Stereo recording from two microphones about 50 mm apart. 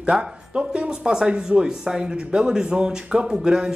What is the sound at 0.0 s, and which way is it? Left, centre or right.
A man's voice, centre.